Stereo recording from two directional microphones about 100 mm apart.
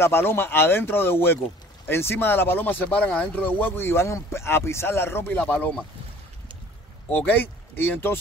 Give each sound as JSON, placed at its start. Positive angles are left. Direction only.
{"t": 0.0, "sound": "speech", "side_deg": 25}
{"t": 7.1, "sound": "speech", "side_deg": 20}